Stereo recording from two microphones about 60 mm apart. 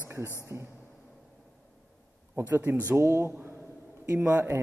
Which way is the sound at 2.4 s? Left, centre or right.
Right.